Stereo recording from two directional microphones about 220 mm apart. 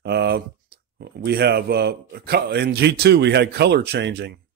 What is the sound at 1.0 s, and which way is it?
A man's voice, 50° right (ahead or behind).